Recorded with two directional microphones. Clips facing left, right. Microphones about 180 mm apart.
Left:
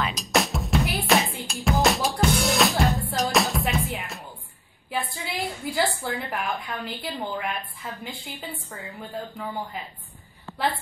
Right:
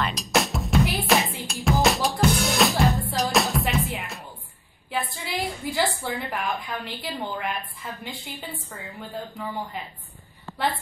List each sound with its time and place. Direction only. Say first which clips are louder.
0.0 s music: even; centre (ahead or behind)
4.9 s a sound: even; centre (ahead or behind)
5.8 s a woman's voice: even; centre (ahead or behind)